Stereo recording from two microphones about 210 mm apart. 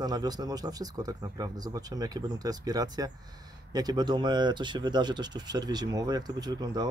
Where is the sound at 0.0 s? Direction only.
20° right (ahead or behind).